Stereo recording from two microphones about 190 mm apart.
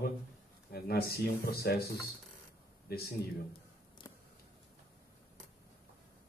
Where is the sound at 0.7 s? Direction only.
55° left (ahead or behind).